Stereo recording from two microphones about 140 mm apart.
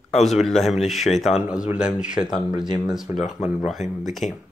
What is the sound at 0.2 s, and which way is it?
Speech, centre (ahead or behind).